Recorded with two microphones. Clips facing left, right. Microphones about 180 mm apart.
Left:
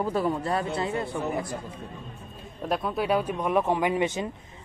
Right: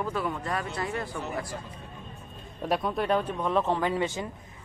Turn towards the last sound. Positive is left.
turn(degrees=20)  # may be behind; listen again after turning